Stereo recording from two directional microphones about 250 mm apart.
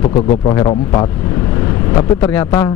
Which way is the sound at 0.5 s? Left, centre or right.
Centre.